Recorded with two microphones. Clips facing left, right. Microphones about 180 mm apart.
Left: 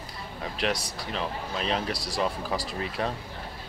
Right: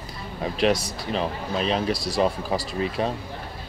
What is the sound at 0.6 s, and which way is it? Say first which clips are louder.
Speech: right 8 dB; 20° right (ahead or behind).